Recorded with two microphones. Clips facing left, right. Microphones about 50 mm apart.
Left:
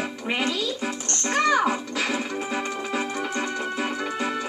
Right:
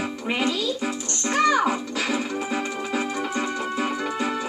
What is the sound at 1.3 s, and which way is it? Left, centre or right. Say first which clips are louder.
Music: right 1 dB; centre.